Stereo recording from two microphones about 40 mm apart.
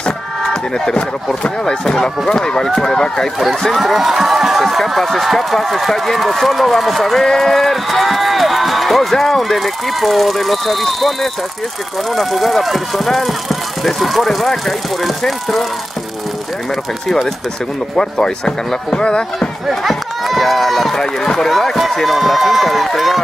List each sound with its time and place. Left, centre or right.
0.9 s speech: left
1.9 s speech: centre
3.7 s speech: centre
12.2 s speech: centre
17.9 s speech: centre
19.7 s run: centre
20.9 s speech: centre
21.5 s speech: centre